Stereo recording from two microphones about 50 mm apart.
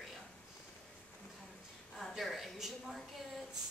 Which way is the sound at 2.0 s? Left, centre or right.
Centre.